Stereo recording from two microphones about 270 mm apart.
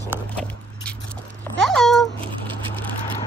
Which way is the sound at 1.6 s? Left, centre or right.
Centre.